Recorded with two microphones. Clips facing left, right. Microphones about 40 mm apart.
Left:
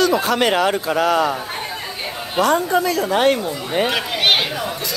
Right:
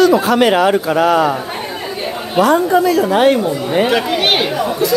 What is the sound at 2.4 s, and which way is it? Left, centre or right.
Speech, right.